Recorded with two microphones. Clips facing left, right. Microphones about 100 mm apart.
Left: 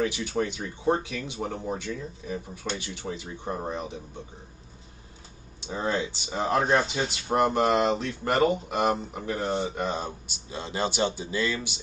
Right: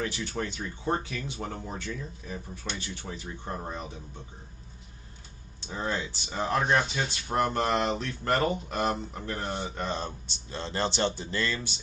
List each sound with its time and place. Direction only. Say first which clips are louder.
0.0 s speech: left 5 dB; 15° left (ahead or behind)
5.7 s speech: left 4 dB; 20° left (ahead or behind)
6.6 s speech: left 2 dB; 35° left (ahead or behind)
7.1 s speech: left 4 dB; 15° left (ahead or behind)